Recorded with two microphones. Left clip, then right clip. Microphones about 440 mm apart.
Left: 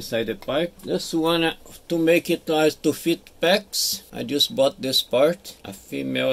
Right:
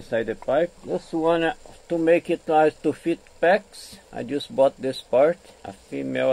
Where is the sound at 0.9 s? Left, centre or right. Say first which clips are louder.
Left 1 dB; centre.